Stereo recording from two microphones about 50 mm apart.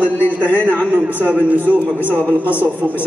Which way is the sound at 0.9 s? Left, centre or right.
Right.